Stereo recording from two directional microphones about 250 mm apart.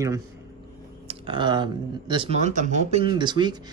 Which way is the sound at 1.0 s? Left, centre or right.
Centre.